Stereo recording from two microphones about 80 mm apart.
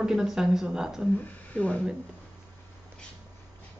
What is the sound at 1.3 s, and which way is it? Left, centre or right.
Speech, centre.